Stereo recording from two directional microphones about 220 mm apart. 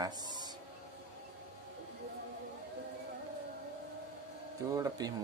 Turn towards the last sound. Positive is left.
turn(degrees=-15)  # may be behind; listen again after turning